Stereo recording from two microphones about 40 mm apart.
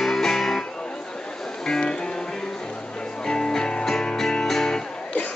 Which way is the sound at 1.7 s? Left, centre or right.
Centre.